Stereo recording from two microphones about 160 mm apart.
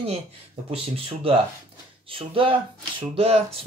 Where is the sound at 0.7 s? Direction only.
35° right (ahead or behind).